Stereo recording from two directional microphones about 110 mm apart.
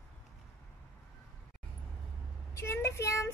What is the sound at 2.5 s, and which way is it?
Speech, 25° left (ahead or behind).